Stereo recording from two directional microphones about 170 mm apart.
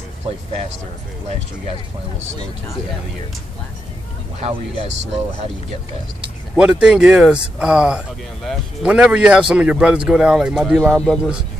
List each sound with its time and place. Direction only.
4.4 s speech: 35° right (ahead or behind)
6.5 s speech: 5° right (ahead or behind)